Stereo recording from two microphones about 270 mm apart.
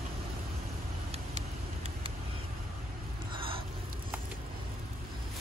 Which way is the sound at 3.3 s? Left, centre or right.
Centre.